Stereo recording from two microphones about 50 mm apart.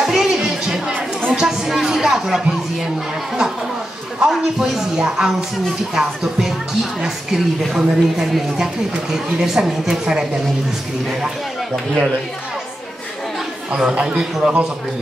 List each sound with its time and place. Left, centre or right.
0.0 s music: centre
1.3 s a sound: centre
4.2 s speech: centre
13.7 s speech: centre